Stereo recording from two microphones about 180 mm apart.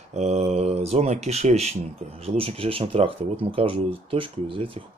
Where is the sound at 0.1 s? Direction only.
40° right (ahead or behind).